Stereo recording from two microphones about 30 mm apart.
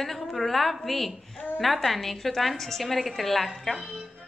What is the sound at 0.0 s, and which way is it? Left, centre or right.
A woman's voice, centre.